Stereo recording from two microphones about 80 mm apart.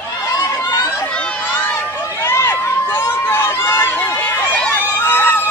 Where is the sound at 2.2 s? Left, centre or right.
Left.